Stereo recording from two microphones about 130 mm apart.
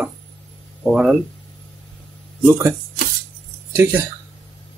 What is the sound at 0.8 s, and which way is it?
Speech, centre (ahead or behind).